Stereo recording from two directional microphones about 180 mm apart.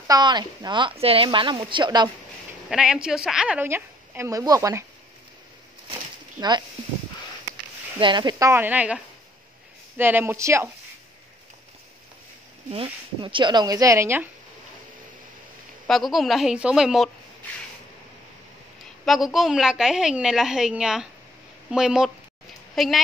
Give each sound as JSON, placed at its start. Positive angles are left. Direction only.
{"t": 0.1, "sound": "speech", "side_deg": -25}
{"t": 2.7, "sound": "a woman's voice", "side_deg": -5}
{"t": 6.4, "sound": "speech", "side_deg": -20}
{"t": 8.0, "sound": "a woman's voice", "side_deg": -25}
{"t": 12.7, "sound": "speech", "side_deg": -25}
{"t": 15.9, "sound": "a woman's voice", "side_deg": 0}
{"t": 19.0, "sound": "a woman's voice", "side_deg": 0}